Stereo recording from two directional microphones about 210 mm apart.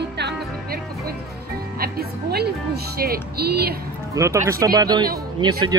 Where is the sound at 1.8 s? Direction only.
50° right (ahead or behind).